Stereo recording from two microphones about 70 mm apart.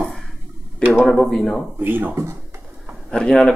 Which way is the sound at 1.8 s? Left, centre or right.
Right.